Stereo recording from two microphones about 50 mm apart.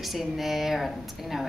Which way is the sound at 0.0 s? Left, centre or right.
Centre.